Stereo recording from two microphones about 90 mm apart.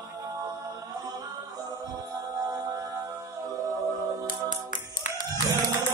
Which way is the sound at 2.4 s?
45° right (ahead or behind).